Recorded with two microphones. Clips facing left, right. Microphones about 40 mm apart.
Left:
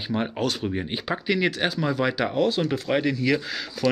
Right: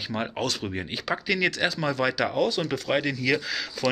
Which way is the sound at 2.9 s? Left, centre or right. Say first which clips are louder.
Even; right.